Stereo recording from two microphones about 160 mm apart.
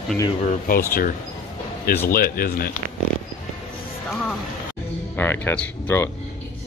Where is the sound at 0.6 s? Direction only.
65° left (ahead or behind).